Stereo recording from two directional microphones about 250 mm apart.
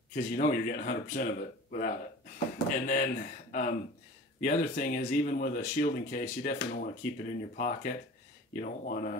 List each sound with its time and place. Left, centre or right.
0.1 s speech: left